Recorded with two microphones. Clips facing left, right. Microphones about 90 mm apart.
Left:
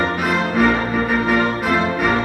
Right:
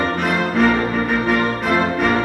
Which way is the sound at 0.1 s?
Centre (ahead or behind).